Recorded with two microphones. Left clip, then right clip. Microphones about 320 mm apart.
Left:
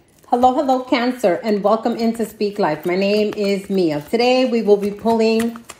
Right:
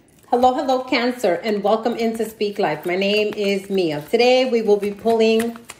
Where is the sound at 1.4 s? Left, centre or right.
Centre.